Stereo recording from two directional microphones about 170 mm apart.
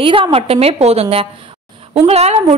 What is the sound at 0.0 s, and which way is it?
A woman's voice, 30° right (ahead or behind).